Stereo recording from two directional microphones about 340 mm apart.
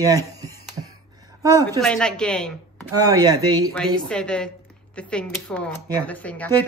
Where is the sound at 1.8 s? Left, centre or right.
Centre.